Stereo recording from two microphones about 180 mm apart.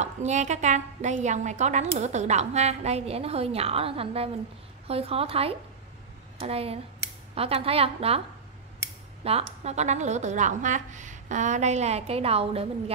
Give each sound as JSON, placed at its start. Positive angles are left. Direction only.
{"t": 0.0, "sound": "a woman's voice", "side_deg": -40}
{"t": 9.2, "sound": "a woman's voice", "side_deg": -35}